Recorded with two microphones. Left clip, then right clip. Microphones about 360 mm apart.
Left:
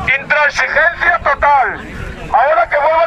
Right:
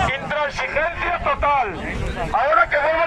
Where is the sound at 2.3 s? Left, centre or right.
Left.